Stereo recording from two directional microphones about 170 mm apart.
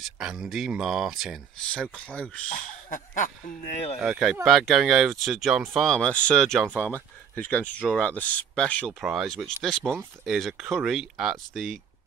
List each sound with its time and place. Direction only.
0.0 s speech: 5° right (ahead or behind)
2.5 s speech: 50° left (ahead or behind)
4.0 s speech: centre (ahead or behind)